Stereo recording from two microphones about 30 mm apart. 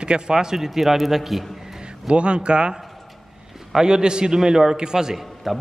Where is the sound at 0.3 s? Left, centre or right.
Centre.